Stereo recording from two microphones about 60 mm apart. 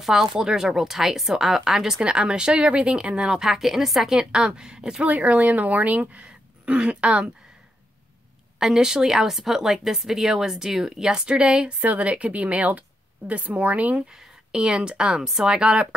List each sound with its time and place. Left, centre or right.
0.0 s speech: centre
5.1 s speech: right
8.5 s speech: centre; by 14.0 s right
14.1 s speech: centre